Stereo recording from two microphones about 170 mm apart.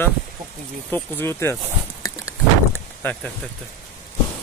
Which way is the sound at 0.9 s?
10° left (ahead or behind).